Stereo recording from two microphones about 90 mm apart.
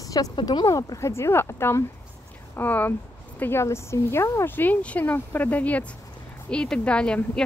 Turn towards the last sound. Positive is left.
turn(degrees=10)  # may be behind; listen again after turning